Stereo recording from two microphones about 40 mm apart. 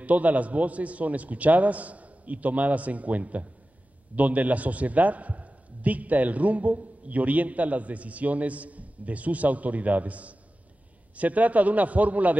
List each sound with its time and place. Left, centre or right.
0.0 s a man's voice: right